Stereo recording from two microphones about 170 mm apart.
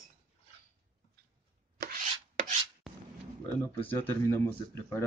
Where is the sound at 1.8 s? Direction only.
65° right (ahead or behind).